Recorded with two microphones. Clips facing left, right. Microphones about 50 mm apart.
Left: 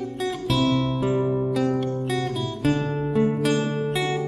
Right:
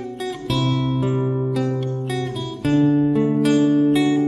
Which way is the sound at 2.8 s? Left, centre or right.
Left.